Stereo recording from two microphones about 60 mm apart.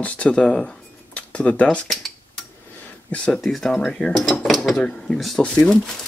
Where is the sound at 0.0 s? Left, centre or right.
Centre.